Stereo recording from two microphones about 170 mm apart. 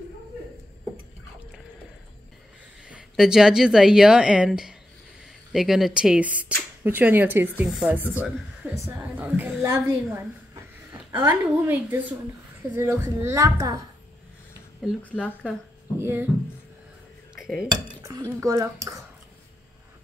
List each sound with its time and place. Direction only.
2.9 s a woman's voice: 5° right (ahead or behind)
14.8 s a woman's voice: centre (ahead or behind)
17.4 s cutlery: centre (ahead or behind)
17.6 s speech: 25° right (ahead or behind)